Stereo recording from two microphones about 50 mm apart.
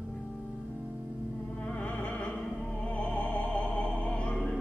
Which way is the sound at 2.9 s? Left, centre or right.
Left.